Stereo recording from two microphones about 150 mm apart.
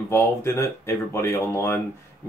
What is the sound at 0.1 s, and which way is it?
Speech, 20° left (ahead or behind).